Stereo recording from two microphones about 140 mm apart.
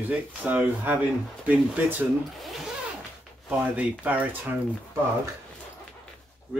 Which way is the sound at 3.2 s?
10° right (ahead or behind).